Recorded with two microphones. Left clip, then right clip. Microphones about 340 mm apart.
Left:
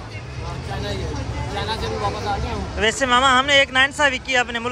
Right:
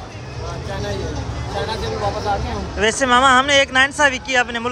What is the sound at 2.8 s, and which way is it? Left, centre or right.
Speech, centre.